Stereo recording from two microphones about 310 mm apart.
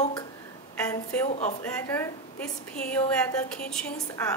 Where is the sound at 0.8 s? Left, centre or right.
Centre.